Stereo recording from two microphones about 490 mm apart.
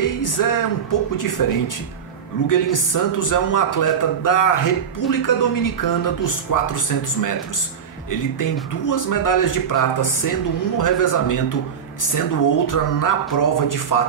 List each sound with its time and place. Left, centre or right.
0.0 s a man's voice: left